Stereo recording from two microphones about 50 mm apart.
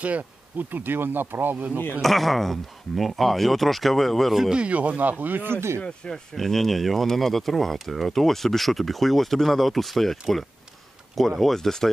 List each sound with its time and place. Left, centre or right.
0.0 s bee: right
2.0 s speech: centre
4.5 s bee: right
5.8 s speech: centre
6.3 s speech: centre
11.1 s speech: centre